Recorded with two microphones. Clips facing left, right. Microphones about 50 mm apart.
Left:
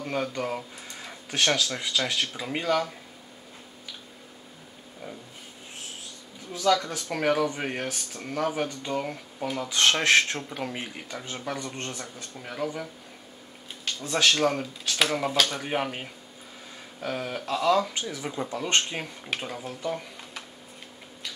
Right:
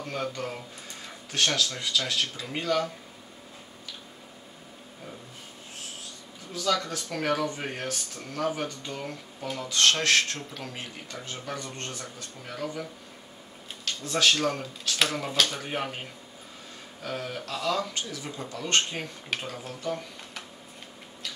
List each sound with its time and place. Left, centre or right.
0.0 s speech: centre
6.5 s speech: centre
14.0 s speech: centre
17.0 s speech: centre